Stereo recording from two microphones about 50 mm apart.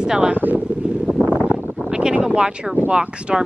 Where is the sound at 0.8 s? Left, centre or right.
Right.